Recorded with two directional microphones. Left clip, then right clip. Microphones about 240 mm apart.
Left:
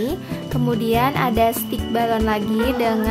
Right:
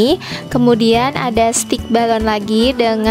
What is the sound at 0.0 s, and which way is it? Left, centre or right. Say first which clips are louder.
Speech: right 11 dB; right.